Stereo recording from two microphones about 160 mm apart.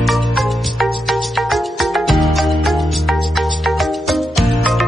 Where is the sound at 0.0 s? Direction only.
Centre (ahead or behind).